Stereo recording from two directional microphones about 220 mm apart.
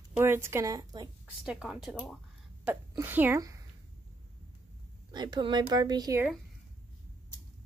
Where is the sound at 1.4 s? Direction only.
5° right (ahead or behind).